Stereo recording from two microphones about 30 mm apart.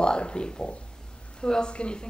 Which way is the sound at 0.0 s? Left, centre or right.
Left.